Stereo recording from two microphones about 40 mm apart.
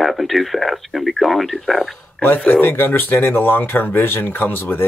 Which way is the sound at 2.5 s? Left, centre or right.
Left.